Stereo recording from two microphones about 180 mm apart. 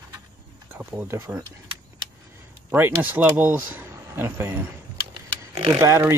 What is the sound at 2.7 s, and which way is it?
Speech, 10° right (ahead or behind).